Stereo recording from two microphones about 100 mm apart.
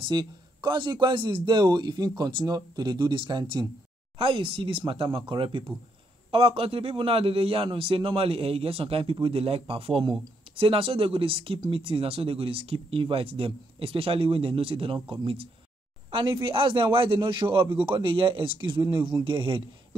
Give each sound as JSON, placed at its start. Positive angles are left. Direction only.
{"t": 0.0, "sound": "a man's voice", "side_deg": -50}
{"t": 4.2, "sound": "a man's voice", "side_deg": -60}
{"t": 6.3, "sound": "a man's voice", "side_deg": -65}
{"t": 19.2, "sound": "a man's voice", "side_deg": -60}